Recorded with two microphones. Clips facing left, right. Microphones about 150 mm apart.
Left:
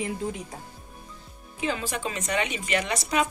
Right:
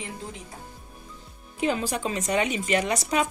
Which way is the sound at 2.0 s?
35° right (ahead or behind).